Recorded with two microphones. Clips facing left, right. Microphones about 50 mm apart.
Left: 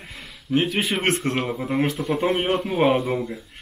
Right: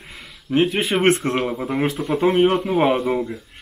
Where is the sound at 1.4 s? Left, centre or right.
Centre.